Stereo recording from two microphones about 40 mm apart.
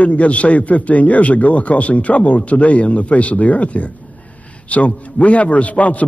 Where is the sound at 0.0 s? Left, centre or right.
Left.